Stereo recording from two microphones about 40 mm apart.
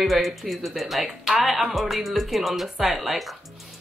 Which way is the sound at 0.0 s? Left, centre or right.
Centre.